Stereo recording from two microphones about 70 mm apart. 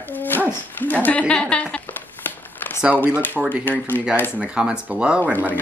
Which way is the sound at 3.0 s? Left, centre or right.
Left.